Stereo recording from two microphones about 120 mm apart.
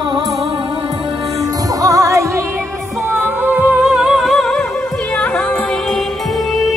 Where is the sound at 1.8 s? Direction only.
30° right (ahead or behind).